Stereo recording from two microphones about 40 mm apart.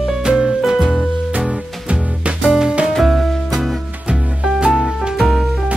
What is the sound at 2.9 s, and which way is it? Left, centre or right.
Music, centre.